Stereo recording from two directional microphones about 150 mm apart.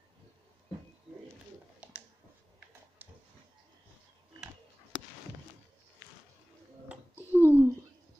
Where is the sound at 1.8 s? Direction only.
10° right (ahead or behind).